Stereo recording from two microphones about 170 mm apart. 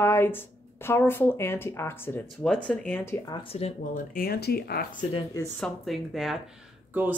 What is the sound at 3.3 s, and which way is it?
Speech, 30° left (ahead or behind).